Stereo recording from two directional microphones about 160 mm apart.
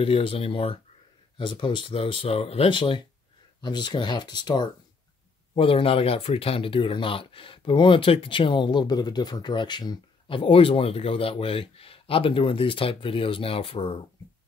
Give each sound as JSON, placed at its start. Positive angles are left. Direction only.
{"t": 0.0, "sound": "speech", "side_deg": 35}